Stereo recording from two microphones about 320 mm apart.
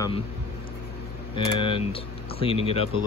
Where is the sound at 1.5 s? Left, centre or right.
Centre.